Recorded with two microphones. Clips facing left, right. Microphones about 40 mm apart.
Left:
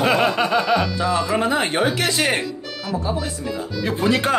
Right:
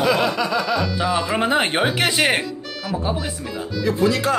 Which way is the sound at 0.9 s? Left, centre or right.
Centre.